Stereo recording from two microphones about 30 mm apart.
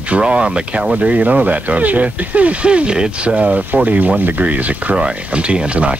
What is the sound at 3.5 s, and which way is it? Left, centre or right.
Speech, right.